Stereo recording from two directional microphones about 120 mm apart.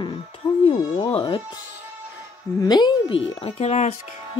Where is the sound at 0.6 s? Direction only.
50° left (ahead or behind).